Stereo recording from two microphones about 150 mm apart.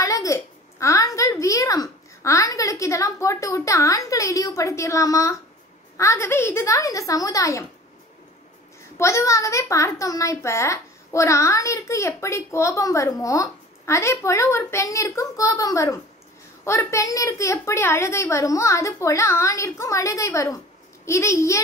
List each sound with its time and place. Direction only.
0.0 s a sound: 20° left (ahead or behind)
5.9 s a child's voice: 20° left (ahead or behind)
8.9 s a child's voice: 20° left (ahead or behind)